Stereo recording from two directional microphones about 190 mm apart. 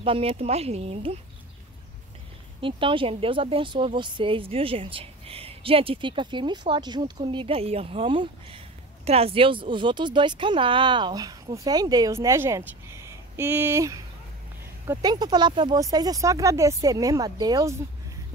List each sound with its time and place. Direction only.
0.0 s speech: 30° right (ahead or behind)
2.6 s a woman's voice: 25° right (ahead or behind)